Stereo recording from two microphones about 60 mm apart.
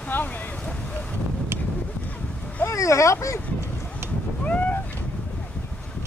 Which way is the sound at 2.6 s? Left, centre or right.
Left.